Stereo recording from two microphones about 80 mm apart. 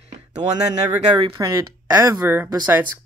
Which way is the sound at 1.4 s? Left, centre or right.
Right.